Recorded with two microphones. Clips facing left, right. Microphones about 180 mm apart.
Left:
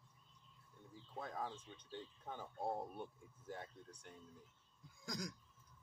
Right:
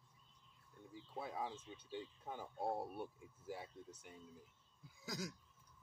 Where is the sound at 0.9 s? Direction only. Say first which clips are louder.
Right 1 dB; 10° right (ahead or behind).